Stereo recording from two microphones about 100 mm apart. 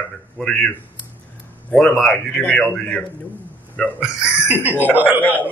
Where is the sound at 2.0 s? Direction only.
5° left (ahead or behind).